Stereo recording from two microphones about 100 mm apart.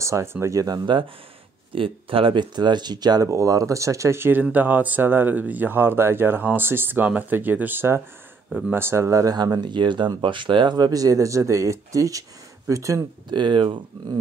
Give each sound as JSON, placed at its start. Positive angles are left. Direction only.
{"t": 0.0, "sound": "speech", "side_deg": -30}
{"t": 1.8, "sound": "speech", "side_deg": -60}
{"t": 3.3, "sound": "speech", "side_deg": -35}
{"t": 8.5, "sound": "speech", "side_deg": -5}
{"t": 8.7, "sound": "speech", "side_deg": -25}
{"t": 13.3, "sound": "speech", "side_deg": -50}